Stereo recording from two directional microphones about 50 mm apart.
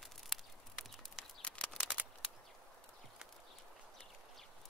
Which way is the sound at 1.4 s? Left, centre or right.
Left.